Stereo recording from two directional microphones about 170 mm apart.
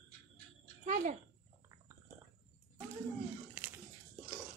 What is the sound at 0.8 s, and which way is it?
Speech, 45° right (ahead or behind).